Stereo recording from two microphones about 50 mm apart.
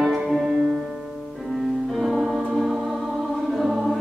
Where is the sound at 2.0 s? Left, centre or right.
Centre.